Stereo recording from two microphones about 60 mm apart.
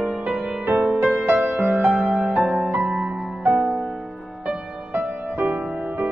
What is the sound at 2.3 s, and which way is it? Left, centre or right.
Music, centre.